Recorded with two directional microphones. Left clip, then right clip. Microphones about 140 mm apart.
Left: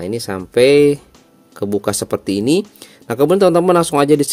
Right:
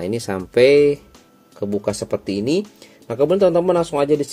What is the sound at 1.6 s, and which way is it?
Speech, 45° left (ahead or behind).